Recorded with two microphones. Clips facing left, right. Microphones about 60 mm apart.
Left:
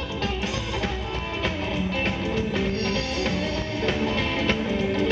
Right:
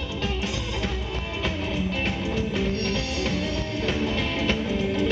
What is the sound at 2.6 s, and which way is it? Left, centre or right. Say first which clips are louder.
Music: left 1 dB; centre.